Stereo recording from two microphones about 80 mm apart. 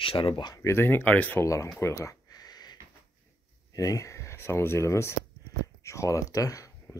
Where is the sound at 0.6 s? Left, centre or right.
Left.